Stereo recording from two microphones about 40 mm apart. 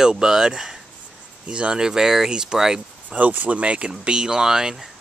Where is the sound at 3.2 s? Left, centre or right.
Right; by 4.7 s centre.